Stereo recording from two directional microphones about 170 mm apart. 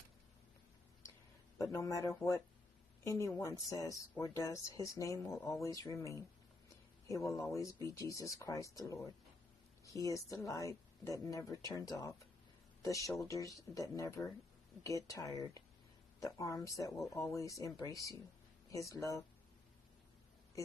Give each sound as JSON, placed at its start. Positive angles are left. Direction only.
{"t": 1.6, "sound": "speech", "side_deg": 20}